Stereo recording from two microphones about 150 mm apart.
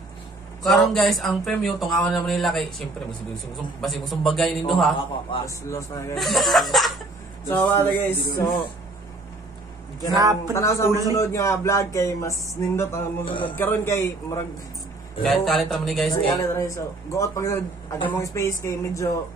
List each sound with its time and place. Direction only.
0.7 s speech: centre (ahead or behind)
3.8 s speech: centre (ahead or behind)
5.7 s speech: 20° left (ahead or behind)
6.1 s speech: centre (ahead or behind)
7.4 s a sound: 15° left (ahead or behind)
10.1 s speech: 25° right (ahead or behind)
10.5 s speech: 20° left (ahead or behind)
13.4 s a sound: 15° left (ahead or behind)
15.2 s speech: centre (ahead or behind)
16.1 s speech: 25° left (ahead or behind)